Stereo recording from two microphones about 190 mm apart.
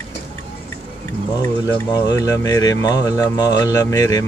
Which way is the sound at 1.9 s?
20° left (ahead or behind).